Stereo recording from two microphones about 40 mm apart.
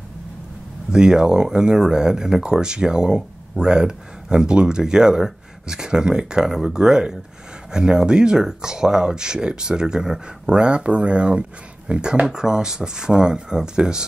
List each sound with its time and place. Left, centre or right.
0.9 s speech: centre